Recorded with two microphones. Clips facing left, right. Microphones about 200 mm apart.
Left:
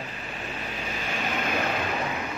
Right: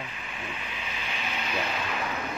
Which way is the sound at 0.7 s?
45° left (ahead or behind).